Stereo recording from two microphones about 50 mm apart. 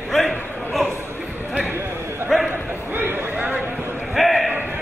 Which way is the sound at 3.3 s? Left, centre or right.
Right.